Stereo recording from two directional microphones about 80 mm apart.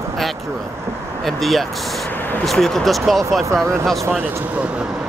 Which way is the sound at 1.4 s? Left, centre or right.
Centre.